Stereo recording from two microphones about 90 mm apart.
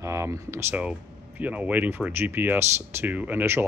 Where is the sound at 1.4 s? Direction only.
15° right (ahead or behind).